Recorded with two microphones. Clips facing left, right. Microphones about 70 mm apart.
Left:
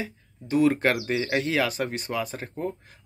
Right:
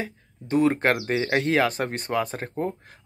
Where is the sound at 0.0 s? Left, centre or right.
Right.